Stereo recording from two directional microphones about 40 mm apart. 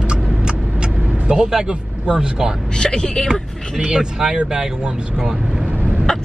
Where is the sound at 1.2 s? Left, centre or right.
Centre.